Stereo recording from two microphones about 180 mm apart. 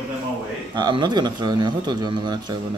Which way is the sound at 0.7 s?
25° right (ahead or behind).